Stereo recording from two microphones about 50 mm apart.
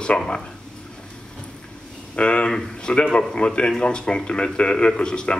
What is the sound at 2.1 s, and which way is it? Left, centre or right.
Speech, left.